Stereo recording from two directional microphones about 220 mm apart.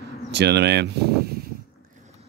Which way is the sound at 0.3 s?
50° right (ahead or behind).